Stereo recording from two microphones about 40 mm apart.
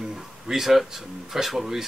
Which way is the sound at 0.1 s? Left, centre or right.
Centre.